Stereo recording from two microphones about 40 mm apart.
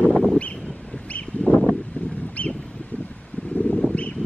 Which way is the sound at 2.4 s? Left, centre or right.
Left.